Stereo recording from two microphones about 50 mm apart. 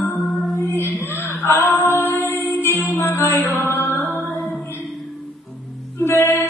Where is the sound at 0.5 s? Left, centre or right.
Left.